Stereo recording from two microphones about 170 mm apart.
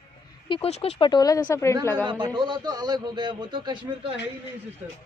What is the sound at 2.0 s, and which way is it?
A man's voice, 25° right (ahead or behind).